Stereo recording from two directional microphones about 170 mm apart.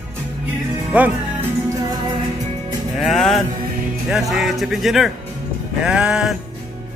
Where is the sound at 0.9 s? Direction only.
5° right (ahead or behind).